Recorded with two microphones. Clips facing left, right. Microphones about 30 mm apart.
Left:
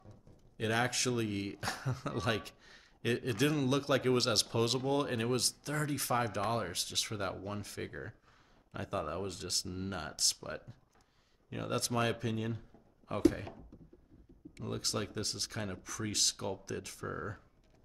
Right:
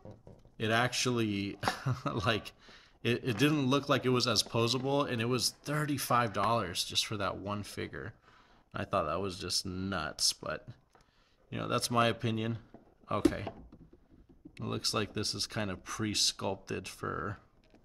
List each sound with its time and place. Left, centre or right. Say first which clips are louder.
0.1 s speech: right 6 dB; centre
6.1 s speech: right 5 dB; right